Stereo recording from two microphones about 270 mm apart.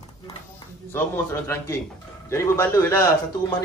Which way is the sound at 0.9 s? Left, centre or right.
Centre.